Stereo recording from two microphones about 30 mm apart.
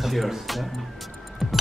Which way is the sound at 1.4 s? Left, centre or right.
Centre.